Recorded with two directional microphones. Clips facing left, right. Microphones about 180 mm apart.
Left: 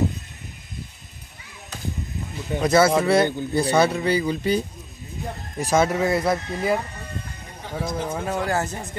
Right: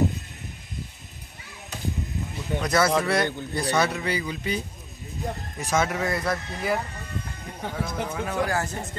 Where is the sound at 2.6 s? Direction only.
25° left (ahead or behind).